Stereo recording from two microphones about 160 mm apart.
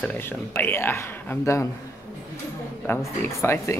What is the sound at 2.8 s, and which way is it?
Speech, 15° left (ahead or behind).